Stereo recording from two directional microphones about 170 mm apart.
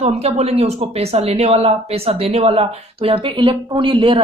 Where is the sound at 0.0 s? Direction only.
40° right (ahead or behind).